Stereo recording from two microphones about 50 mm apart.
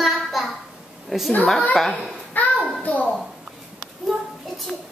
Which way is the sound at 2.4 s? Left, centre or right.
Left.